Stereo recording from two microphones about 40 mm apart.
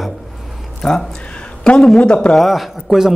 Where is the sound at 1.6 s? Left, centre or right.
Left.